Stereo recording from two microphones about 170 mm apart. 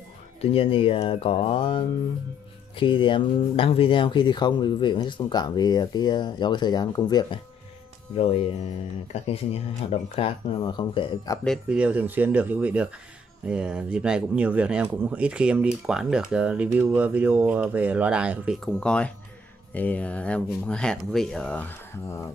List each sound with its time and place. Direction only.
0.4 s speech: 35° left (ahead or behind)
9.1 s speech: 35° left (ahead or behind)
11.4 s speech: centre (ahead or behind)
18.8 s speech: 5° left (ahead or behind)